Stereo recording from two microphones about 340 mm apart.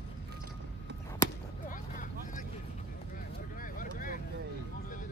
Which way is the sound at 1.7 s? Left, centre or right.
Left.